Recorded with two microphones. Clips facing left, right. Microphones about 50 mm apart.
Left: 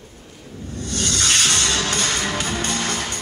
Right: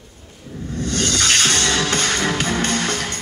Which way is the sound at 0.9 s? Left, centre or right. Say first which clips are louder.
Right 2 dB; right.